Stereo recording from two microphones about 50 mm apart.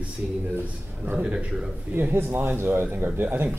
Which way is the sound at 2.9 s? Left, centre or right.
Right.